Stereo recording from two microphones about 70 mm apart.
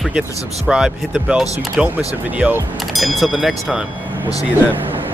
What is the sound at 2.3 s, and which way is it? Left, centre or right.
Speech, right.